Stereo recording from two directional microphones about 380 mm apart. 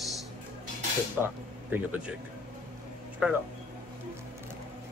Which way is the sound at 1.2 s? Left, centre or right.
Centre.